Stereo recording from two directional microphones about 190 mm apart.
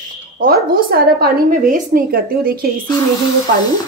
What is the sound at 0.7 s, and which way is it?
A woman's voice, 50° right (ahead or behind).